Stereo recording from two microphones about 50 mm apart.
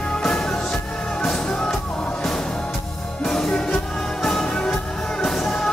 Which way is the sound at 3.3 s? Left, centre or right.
Centre.